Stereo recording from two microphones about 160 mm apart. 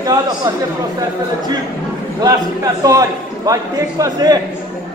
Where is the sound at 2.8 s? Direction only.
20° right (ahead or behind).